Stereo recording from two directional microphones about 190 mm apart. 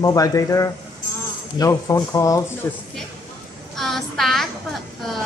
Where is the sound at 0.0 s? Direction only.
15° left (ahead or behind).